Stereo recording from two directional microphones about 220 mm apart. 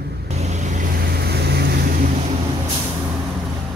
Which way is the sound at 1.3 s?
50° right (ahead or behind).